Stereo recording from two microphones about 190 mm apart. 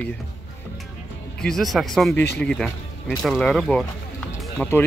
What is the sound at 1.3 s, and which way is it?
Speech, 5° left (ahead or behind).